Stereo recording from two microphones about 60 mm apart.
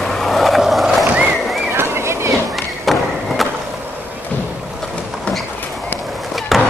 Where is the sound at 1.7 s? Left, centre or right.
Right.